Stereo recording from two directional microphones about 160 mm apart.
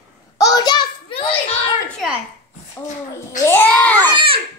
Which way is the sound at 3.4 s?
15° left (ahead or behind).